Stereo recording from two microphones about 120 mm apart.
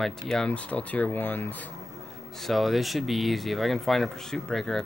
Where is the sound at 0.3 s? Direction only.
10° left (ahead or behind).